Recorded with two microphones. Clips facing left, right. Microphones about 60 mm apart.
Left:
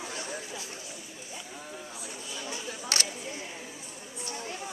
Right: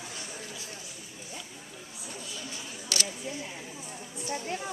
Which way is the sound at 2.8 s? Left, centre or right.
Left.